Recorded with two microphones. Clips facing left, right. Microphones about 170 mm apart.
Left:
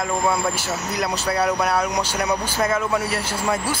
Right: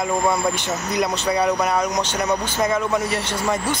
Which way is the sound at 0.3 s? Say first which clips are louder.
Right 1 dB; 5° left (ahead or behind).